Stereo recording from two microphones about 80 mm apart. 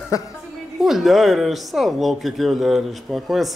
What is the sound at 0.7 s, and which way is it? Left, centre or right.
A woman's voice, centre.